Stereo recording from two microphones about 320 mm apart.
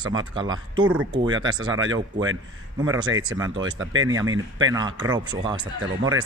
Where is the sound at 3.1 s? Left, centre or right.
Right.